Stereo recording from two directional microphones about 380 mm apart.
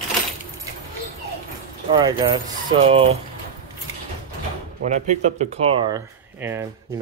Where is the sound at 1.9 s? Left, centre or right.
Centre.